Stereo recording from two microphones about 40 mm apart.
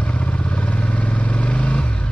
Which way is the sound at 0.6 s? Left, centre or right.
Left.